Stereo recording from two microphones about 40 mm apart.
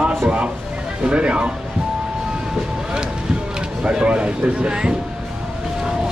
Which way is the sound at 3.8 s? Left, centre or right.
Right.